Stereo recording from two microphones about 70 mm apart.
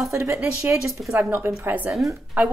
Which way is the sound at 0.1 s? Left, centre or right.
Right.